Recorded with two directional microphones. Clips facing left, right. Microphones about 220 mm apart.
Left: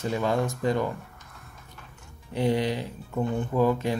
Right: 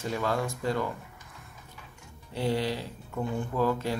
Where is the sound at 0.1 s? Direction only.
15° left (ahead or behind).